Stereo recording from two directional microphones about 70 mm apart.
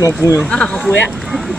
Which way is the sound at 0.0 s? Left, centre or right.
Left.